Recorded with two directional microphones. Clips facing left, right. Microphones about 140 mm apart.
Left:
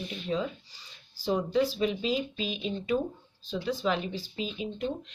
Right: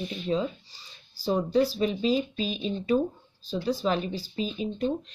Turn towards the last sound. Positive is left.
turn(degrees=-40)  # may be behind; listen again after turning